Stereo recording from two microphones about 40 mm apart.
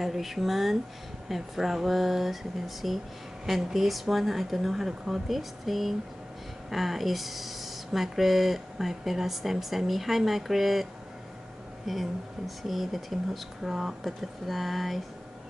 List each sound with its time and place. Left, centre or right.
0.0 s speech: centre